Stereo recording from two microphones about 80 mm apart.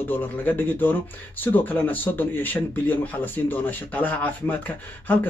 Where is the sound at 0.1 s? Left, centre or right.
Left.